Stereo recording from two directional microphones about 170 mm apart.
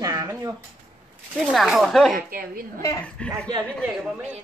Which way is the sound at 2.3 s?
60° right (ahead or behind).